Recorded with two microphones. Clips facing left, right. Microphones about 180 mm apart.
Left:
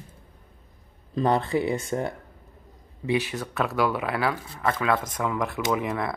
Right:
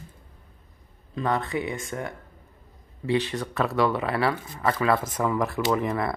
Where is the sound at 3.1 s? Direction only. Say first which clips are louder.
Right 1 dB; 10° left (ahead or behind).